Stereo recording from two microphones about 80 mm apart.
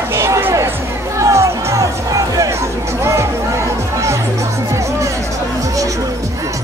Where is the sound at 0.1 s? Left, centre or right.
Right.